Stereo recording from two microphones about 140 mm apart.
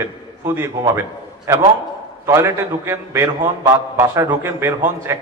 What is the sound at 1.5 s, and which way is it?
A man's voice, 20° right (ahead or behind).